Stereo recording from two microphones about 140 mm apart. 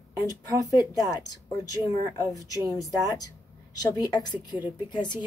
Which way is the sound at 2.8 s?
25° left (ahead or behind).